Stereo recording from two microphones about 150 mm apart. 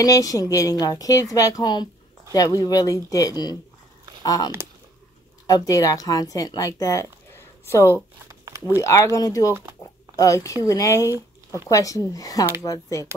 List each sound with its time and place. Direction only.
0.0 s a woman's voice: 25° left (ahead or behind)
5.5 s speech: 25° left (ahead or behind)
8.3 s a sound: 20° right (ahead or behind)
8.8 s a woman's voice: 20° left (ahead or behind)
11.1 s a sound: 20° right (ahead or behind)
11.7 s a woman's voice: 20° left (ahead or behind)